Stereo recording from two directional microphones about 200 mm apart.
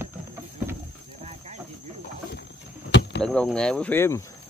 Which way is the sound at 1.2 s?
35° right (ahead or behind).